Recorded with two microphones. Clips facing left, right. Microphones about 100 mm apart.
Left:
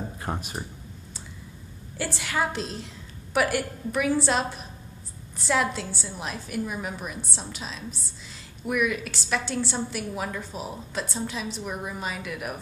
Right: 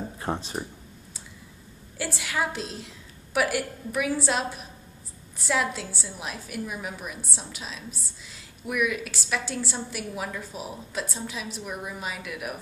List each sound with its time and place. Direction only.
0.3 s speech: 25° right (ahead or behind)
2.0 s a woman's voice: 5° right (ahead or behind)